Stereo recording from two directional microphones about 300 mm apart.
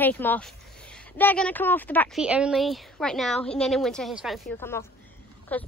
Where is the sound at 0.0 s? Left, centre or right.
Centre.